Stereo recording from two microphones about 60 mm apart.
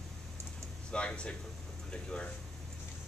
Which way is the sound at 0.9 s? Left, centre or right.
Centre.